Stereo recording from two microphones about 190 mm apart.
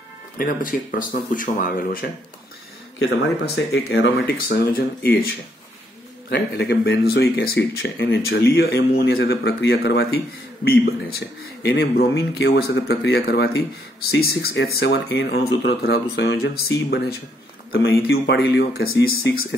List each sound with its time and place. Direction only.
0.4 s speech: 45° left (ahead or behind)
3.7 s speech: 65° left (ahead or behind)
6.3 s speech: 65° left (ahead or behind)